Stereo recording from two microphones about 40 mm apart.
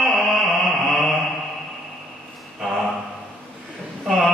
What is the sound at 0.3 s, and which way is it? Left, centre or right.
Mantra, centre.